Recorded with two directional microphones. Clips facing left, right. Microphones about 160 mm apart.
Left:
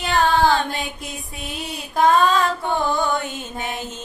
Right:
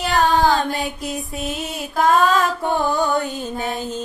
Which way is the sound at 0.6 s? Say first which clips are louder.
Right 3 dB; 40° right (ahead or behind).